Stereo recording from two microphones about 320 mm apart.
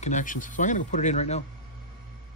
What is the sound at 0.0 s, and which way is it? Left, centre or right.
Speech, left.